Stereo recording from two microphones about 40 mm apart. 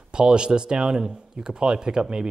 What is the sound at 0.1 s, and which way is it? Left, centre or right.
Speech, right.